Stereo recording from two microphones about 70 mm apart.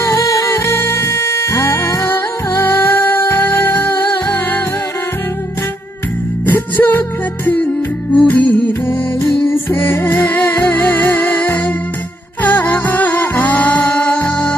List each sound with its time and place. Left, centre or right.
0.0 s music: left
6.4 s music: left